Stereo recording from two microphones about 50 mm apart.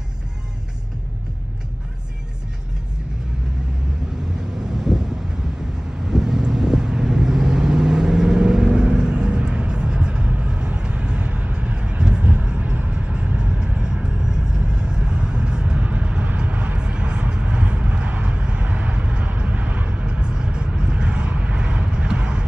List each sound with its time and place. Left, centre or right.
4.7 s wind noise: centre
6.0 s vehicle: centre